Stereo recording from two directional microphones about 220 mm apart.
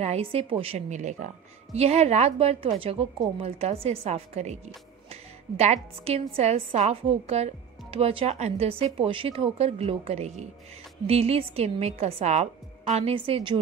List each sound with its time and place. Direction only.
0.0 s a woman's voice: 30° right (ahead or behind)